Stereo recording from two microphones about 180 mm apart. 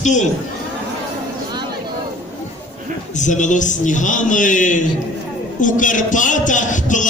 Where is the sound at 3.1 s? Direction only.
45° left (ahead or behind).